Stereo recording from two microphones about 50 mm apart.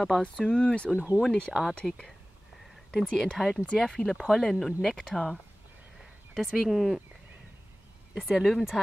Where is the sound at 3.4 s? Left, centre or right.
Centre.